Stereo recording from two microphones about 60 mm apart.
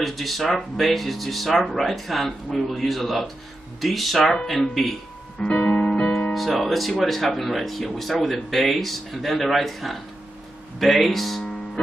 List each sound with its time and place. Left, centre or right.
0.0 s speech: centre
5.4 s music: centre
6.3 s speech: centre